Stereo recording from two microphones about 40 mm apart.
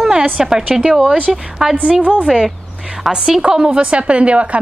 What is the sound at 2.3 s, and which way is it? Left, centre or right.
Speech, centre.